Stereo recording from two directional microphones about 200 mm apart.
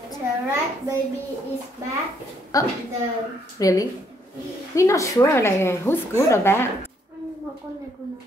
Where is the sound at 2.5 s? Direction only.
15° left (ahead or behind).